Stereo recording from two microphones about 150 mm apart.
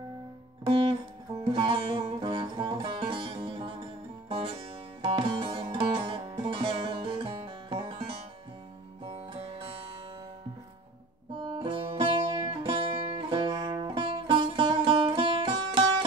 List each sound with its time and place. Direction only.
1.5 s music: 35° right (ahead or behind)
5.0 s music: 35° right (ahead or behind)
11.3 s music: 30° right (ahead or behind)